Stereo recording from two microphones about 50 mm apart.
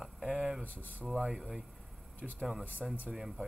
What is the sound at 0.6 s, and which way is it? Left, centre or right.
Speech, left.